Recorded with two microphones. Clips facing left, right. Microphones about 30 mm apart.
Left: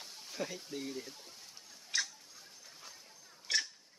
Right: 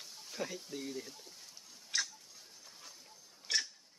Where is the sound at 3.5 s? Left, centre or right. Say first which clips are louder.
Left 1 dB; centre.